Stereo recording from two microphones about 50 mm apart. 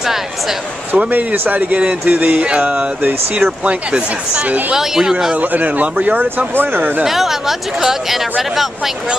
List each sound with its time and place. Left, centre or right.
0.0 s a sound: centre
0.9 s speech: right
2.4 s speech: right
4.7 s speech: centre
5.4 s speech: right
7.1 s speech: centre